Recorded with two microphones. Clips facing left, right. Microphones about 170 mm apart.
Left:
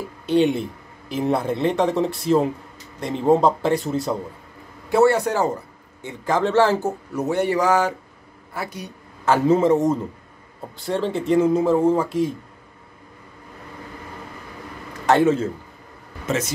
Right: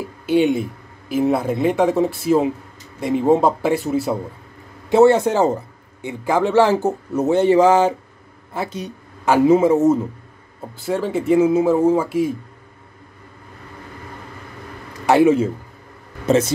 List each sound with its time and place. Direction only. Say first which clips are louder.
0.3 s speech: right 2 dB; 5° right (ahead or behind)
4.9 s speech: right 4 dB; 20° right (ahead or behind)
6.0 s speech: right 3 dB; 15° right (ahead or behind)
9.3 s speech: right 3 dB; 10° right (ahead or behind)
15.0 s speech: right 3 dB; 10° right (ahead or behind)
16.3 s speech: right 8 dB; 30° right (ahead or behind)